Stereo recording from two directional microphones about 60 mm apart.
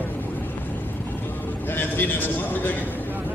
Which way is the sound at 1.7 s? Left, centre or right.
Left.